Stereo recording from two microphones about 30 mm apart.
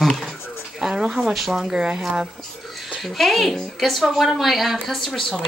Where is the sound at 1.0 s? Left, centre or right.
Right.